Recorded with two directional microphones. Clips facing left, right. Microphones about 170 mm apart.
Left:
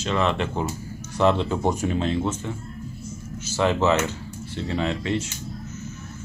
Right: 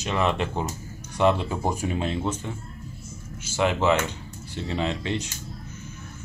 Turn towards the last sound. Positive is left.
turn(degrees=-20)  # may be behind; listen again after turning